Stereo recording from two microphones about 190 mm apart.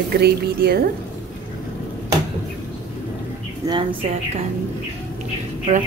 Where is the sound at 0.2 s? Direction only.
55° right (ahead or behind).